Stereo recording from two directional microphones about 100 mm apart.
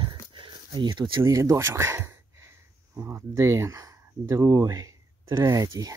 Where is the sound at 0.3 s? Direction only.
55° right (ahead or behind).